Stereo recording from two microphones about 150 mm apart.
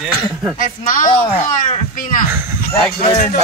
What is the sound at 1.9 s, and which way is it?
Speech, 65° left (ahead or behind).